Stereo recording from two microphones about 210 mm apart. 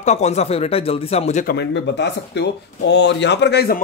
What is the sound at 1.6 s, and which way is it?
Speech, 55° left (ahead or behind).